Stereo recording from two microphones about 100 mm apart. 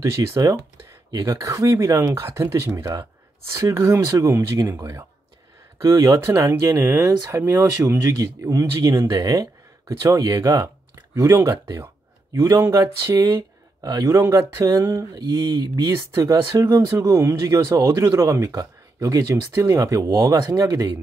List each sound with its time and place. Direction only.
0.0 s speech: 30° right (ahead or behind)
8.9 s speech: 40° right (ahead or behind)